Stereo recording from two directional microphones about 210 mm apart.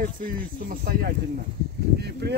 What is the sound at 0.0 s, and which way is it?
Speech, 40° right (ahead or behind).